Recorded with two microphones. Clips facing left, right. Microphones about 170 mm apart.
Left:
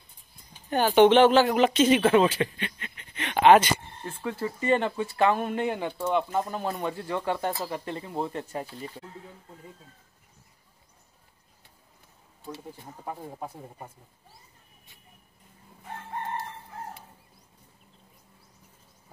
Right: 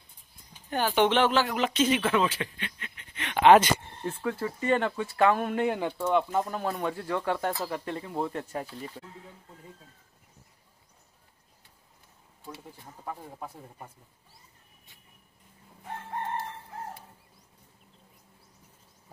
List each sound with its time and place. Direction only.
0.7 s speech: 25° left (ahead or behind)
1.5 s speech: 50° left (ahead or behind)
2.0 s speech: 40° left (ahead or behind)
3.3 s speech: 25° left (ahead or behind)
3.5 s speech: 5° left (ahead or behind)
13.0 s speech: 20° left (ahead or behind)